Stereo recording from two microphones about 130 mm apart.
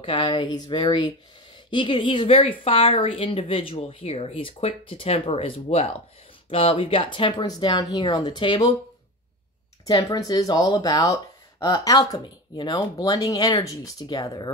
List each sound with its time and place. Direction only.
0.0 s speech: 40° left (ahead or behind)
9.8 s speech: 30° left (ahead or behind)